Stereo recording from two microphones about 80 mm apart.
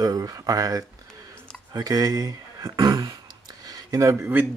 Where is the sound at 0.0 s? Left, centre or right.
Right.